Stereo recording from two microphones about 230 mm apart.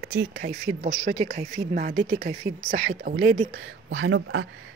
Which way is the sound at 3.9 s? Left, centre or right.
Right.